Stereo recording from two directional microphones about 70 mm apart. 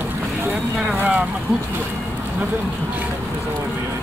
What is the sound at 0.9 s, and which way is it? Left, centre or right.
Speech, centre.